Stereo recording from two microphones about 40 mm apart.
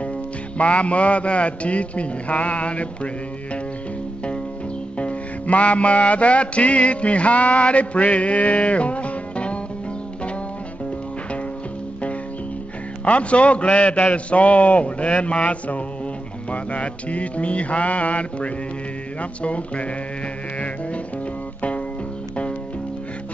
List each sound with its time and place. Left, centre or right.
0.6 s a man's voice: left
4.9 s music: left
13.0 s a man's voice: left